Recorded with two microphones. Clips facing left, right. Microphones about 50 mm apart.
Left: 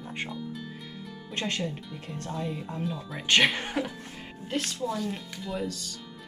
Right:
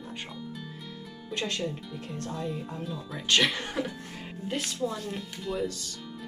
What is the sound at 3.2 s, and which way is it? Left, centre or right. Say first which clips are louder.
Speech: left 2 dB; left.